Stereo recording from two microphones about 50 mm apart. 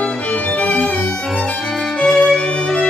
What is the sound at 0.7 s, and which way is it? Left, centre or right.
Violin, centre.